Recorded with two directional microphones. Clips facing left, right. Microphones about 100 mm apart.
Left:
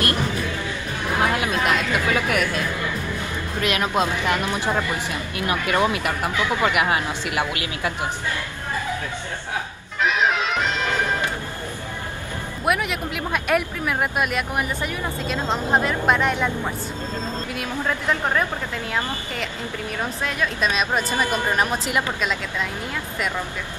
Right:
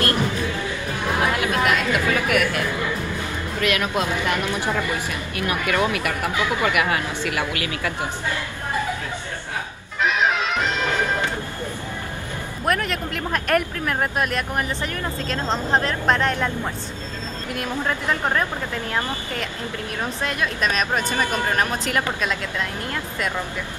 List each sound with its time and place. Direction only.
1.3 s chatter: 20° left (ahead or behind)
3.6 s speech: 20° left (ahead or behind)
10.0 s music: centre (ahead or behind)
12.6 s speech: 5° left (ahead or behind)
20.2 s speech: 5° left (ahead or behind)
21.1 s speech: 15° left (ahead or behind)
21.8 s speech: 5° left (ahead or behind)